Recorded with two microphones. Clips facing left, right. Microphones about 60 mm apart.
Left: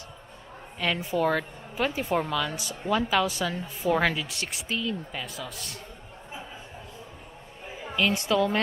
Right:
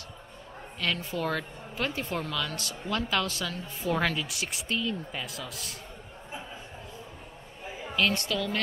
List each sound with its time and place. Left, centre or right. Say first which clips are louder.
0.7 s speech: left 5 dB; centre
7.8 s a woman's voice: left 1 dB; centre